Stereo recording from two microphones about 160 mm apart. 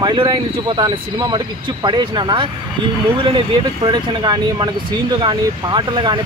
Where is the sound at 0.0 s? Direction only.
30° right (ahead or behind).